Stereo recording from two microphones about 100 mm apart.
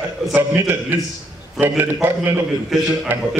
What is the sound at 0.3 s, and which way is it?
A man's voice, 20° right (ahead or behind).